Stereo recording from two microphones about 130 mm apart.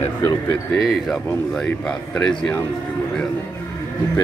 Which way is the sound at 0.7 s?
Centre (ahead or behind).